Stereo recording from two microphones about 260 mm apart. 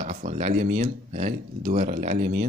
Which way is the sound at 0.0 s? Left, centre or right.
Right.